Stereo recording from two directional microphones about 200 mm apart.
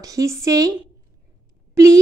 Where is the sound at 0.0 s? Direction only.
15° right (ahead or behind).